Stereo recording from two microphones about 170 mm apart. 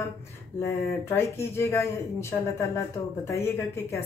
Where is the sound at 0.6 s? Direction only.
15° left (ahead or behind).